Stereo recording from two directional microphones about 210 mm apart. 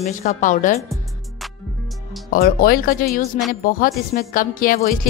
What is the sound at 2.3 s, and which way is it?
Speech, 45° left (ahead or behind).